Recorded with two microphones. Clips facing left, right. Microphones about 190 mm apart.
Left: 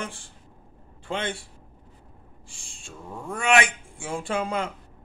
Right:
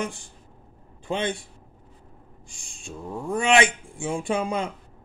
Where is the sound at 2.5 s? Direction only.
15° right (ahead or behind).